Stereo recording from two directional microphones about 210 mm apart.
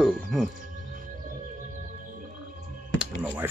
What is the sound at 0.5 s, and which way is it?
Music, 40° right (ahead or behind).